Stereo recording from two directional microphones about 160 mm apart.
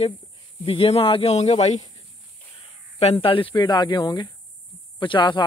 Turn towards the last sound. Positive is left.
turn(degrees=30)  # may be behind; listen again after turning